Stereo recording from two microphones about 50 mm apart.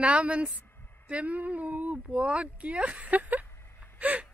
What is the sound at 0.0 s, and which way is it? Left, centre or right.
Speech, right.